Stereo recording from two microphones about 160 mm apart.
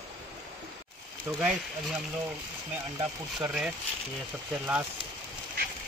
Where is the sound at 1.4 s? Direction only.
5° right (ahead or behind).